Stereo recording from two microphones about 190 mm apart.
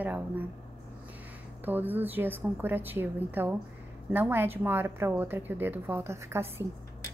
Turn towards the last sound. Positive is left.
turn(degrees=-15)  # may be behind; listen again after turning